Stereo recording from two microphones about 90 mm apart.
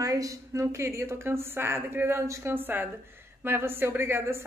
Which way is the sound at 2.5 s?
20° right (ahead or behind).